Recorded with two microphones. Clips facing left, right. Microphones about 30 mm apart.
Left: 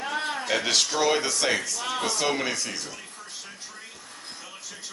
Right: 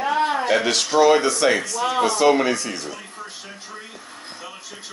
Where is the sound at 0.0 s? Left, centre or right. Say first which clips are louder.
Right 9 dB; centre.